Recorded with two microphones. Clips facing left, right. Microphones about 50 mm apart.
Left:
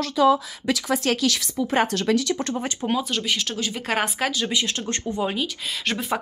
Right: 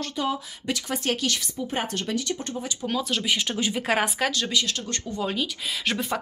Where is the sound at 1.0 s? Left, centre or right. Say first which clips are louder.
Even; left.